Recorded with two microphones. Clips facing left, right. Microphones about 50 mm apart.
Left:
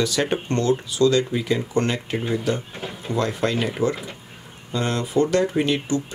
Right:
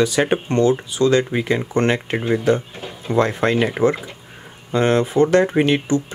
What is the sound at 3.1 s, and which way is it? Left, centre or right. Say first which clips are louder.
Speech: right 6 dB; right.